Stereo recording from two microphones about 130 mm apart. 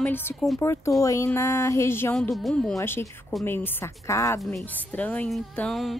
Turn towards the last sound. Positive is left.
turn(degrees=0)  # may be behind; listen again after turning